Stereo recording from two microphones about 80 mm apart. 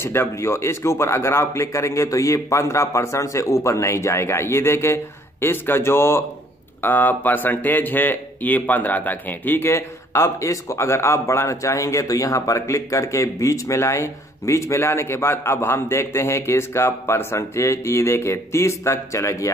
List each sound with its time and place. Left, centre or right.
0.0 s speech: left